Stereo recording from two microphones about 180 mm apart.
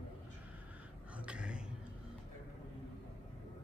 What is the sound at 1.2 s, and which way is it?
Gasp, 5° right (ahead or behind).